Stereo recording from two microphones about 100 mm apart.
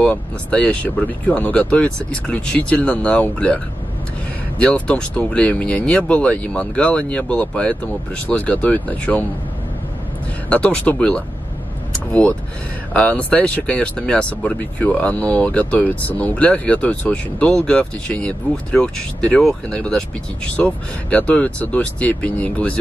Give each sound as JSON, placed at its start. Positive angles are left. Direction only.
{"t": 0.0, "sound": "speech", "side_deg": 15}
{"t": 10.5, "sound": "speech", "side_deg": 15}